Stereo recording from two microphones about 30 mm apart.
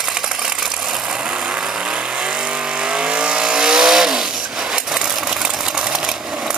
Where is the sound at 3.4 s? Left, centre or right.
Centre.